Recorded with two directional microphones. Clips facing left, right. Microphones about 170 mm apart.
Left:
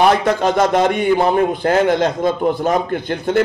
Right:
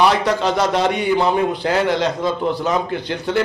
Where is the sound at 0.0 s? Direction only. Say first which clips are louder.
Left 2 dB; 50° left (ahead or behind).